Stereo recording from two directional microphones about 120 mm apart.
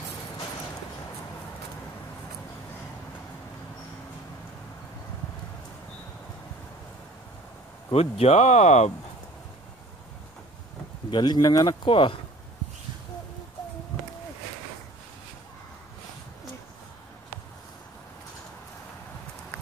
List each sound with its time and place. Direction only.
7.9 s speech: 60° left (ahead or behind); by 8.9 s 75° left (ahead or behind)
11.1 s speech: 40° left (ahead or behind)